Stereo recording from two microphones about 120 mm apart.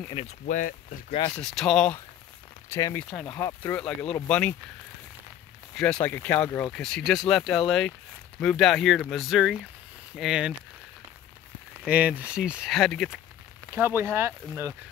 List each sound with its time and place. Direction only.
0.2 s speech: 50° left (ahead or behind)
1.3 s speech: 5° left (ahead or behind)
2.7 s speech: 20° left (ahead or behind)
3.1 s speech: 5° left (ahead or behind)
3.3 s speech: 25° left (ahead or behind)
3.7 s speech: 10° left (ahead or behind)
5.8 s speech: 5° left (ahead or behind)
6.8 s speech: centre (ahead or behind)
11.8 s speech: 15° right (ahead or behind)
13.7 s speech: 20° right (ahead or behind)